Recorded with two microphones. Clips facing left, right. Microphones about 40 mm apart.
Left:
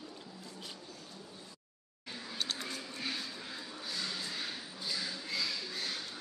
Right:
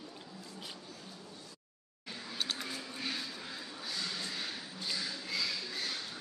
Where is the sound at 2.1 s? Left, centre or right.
Centre.